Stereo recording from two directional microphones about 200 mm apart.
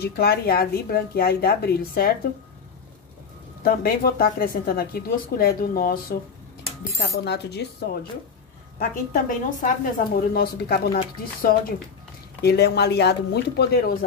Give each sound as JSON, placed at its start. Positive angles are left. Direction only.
{"t": 0.0, "sound": "speech", "side_deg": 55}
{"t": 3.6, "sound": "speech", "side_deg": 50}
{"t": 8.7, "sound": "speech", "side_deg": 40}
{"t": 12.4, "sound": "speech", "side_deg": 55}